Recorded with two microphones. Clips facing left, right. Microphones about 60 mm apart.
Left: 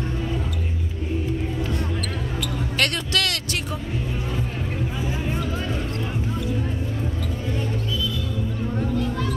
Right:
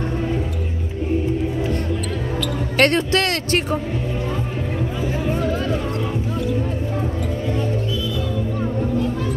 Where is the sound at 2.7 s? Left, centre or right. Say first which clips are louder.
Right 8 dB; right.